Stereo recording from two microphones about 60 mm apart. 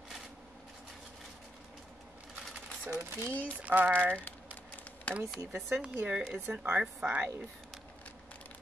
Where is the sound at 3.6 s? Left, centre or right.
Right.